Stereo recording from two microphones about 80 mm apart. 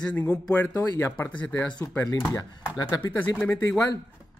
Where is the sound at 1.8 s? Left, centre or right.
Left.